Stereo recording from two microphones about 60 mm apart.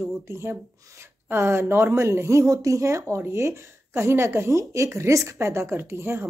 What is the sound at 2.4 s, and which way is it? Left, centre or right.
Speech, right.